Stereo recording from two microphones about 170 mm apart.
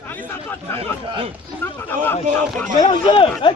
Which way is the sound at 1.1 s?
30° right (ahead or behind).